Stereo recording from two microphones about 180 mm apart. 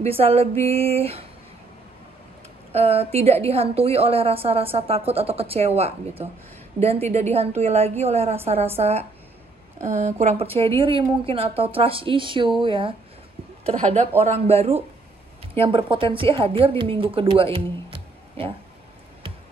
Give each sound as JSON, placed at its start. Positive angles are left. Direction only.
{"t": 0.0, "sound": "a woman's voice", "side_deg": -35}
{"t": 2.7, "sound": "a woman's voice", "side_deg": -35}